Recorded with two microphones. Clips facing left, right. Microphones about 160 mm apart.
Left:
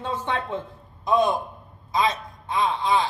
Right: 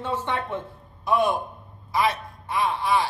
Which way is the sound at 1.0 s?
20° left (ahead or behind).